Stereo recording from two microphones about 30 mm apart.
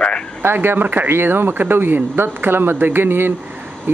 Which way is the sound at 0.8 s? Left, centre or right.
Right.